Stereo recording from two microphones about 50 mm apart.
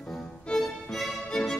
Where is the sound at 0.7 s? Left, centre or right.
Centre.